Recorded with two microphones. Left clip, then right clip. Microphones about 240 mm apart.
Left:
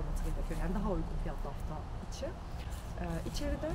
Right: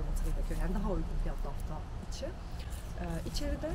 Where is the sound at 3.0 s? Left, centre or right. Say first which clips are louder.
Even; centre.